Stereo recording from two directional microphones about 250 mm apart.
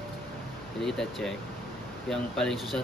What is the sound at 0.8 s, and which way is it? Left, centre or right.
Speech, centre.